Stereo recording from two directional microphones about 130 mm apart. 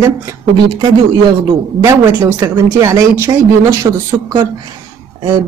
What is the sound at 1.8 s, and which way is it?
Speech, 20° right (ahead or behind).